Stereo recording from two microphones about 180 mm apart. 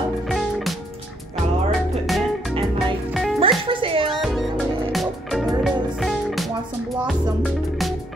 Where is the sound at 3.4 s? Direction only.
30° right (ahead or behind).